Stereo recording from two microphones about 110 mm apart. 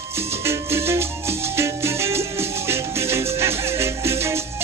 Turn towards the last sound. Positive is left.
turn(degrees=-25)  # may be behind; listen again after turning